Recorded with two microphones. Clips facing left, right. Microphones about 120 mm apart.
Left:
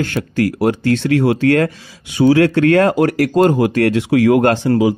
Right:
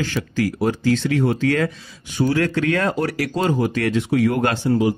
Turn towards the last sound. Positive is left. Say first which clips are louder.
# left 6 dB
turn(degrees=90)